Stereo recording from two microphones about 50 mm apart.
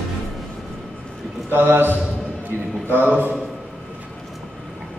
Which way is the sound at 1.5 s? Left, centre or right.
Right.